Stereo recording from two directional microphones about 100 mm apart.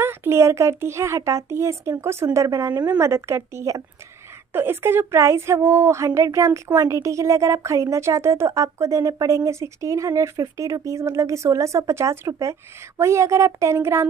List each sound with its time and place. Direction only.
0.0 s a woman's voice: 25° right (ahead or behind)